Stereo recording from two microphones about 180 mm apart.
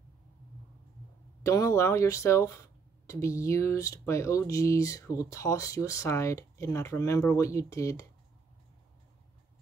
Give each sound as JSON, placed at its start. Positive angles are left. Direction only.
{"t": 1.4, "sound": "speech", "side_deg": 15}